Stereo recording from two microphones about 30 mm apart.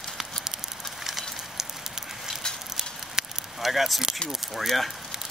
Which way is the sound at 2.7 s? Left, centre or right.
Centre.